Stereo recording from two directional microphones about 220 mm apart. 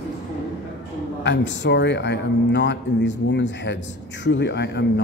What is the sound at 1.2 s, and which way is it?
Speech, 55° left (ahead or behind).